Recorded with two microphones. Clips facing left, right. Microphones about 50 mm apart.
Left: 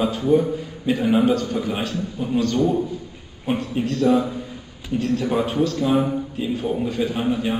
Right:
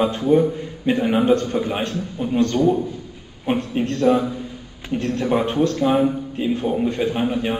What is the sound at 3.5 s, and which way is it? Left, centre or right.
A man's voice, right.